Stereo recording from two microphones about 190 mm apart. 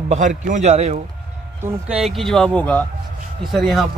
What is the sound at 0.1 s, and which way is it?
Speech, 40° right (ahead or behind).